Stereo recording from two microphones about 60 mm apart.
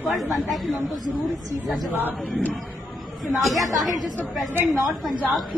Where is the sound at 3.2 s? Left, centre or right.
Centre.